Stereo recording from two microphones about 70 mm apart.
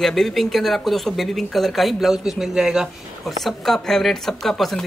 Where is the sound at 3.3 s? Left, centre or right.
Centre.